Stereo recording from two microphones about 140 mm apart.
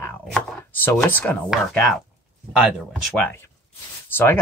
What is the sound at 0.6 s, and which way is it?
Speech, 15° left (ahead or behind).